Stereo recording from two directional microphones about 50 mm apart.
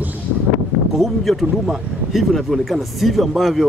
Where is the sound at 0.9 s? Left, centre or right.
Centre.